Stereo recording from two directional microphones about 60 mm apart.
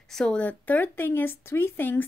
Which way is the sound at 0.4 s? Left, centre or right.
Left.